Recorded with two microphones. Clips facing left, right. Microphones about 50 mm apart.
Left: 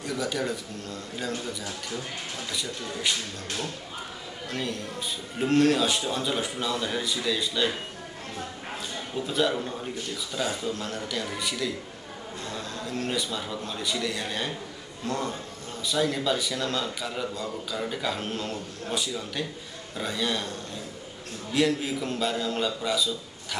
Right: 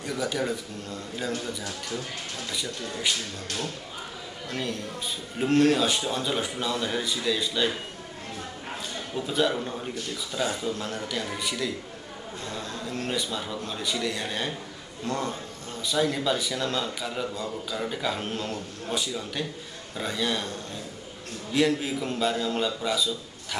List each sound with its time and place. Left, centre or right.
0.0 s a man's voice: centre
1.6 s a man's voice: centre
4.5 s a man's voice: centre
9.1 s a man's voice: centre
21.5 s a man's voice: centre